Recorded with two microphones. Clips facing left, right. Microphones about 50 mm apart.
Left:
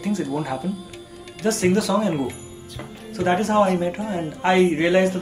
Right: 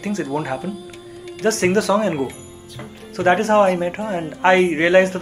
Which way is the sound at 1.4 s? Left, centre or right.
Right.